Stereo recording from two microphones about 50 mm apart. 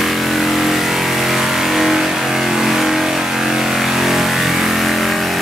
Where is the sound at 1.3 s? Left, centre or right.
Centre.